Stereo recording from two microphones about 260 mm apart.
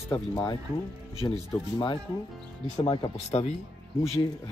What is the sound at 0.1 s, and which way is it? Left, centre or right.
Speech, centre.